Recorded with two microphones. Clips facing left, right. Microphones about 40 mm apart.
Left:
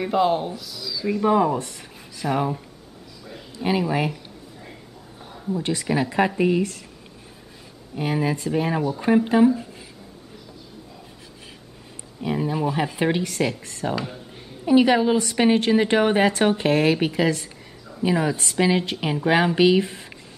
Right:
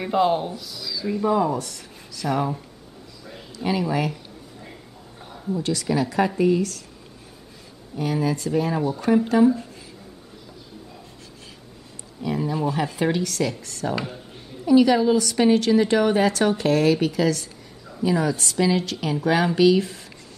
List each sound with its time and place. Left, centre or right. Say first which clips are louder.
0.0 s speech: even; centre
1.2 s speech: left 2 dB; left
2.2 s speech: left 1 dB; centre
3.5 s speech: left 2 dB; left
5.2 s a sound: even; centre
5.6 s a woman's voice: even; left
7.9 s a woman's voice: even; left
9.5 s a sound: right 1 dB; centre
12.2 s a woman's voice: left 1 dB; left
13.9 s speech: even; centre
14.6 s a woman's voice: even; left